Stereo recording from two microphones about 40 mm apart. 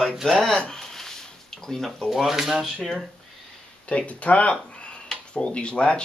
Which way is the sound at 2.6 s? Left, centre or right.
Centre.